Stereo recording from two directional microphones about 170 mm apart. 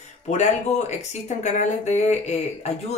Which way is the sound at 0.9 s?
40° left (ahead or behind).